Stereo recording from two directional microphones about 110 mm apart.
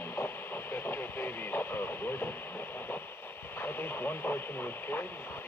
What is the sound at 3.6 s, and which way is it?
Speech, 20° left (ahead or behind).